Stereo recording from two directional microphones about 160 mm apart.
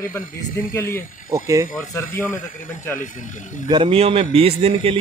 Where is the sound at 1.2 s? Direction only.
20° right (ahead or behind).